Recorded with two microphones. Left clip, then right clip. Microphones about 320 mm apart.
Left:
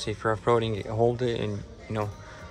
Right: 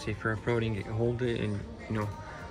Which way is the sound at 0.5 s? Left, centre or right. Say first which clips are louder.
Left 7 dB; centre.